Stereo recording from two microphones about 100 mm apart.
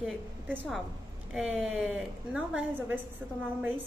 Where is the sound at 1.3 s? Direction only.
5° right (ahead or behind).